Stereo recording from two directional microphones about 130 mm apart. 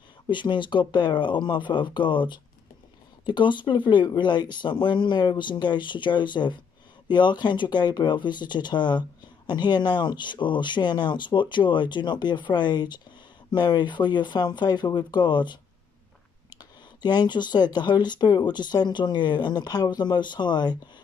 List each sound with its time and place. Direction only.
0.3 s speech: 35° left (ahead or behind)
17.0 s speech: 35° left (ahead or behind)